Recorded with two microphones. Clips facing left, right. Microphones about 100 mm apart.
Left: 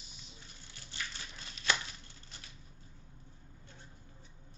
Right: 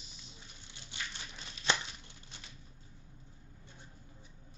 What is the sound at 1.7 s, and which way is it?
Tearing, 25° right (ahead or behind).